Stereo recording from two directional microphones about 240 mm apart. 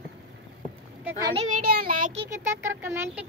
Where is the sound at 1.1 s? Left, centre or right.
Right.